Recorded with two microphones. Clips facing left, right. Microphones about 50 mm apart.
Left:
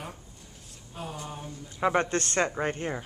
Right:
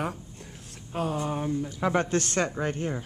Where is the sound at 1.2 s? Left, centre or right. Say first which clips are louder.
Right 10 dB; right.